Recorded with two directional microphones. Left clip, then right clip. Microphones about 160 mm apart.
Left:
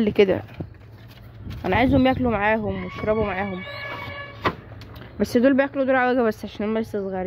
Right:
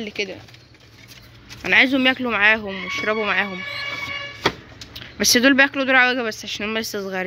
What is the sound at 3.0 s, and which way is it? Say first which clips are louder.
Speech: right 2 dB; centre (ahead or behind).